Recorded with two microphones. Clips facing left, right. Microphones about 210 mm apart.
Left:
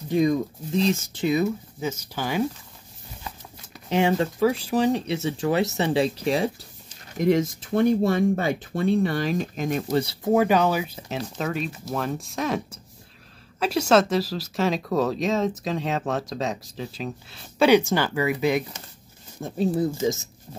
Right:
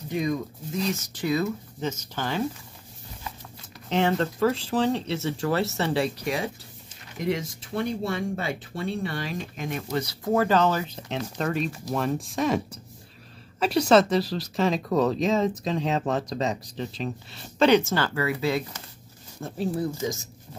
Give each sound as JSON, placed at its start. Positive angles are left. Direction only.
{"t": 0.7, "sound": "speech", "side_deg": 30}
{"t": 1.8, "sound": "speech", "side_deg": 10}
{"t": 3.9, "sound": "speech", "side_deg": 10}
{"t": 7.2, "sound": "speech", "side_deg": 45}
{"t": 10.0, "sound": "speech", "side_deg": 20}